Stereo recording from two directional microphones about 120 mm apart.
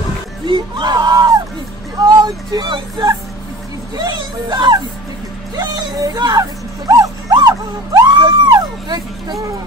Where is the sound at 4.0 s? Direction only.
35° right (ahead or behind).